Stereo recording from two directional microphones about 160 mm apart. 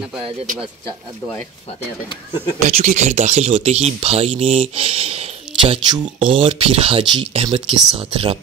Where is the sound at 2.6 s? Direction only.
45° right (ahead or behind).